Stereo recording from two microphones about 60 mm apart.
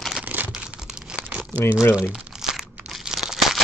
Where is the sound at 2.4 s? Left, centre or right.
Centre.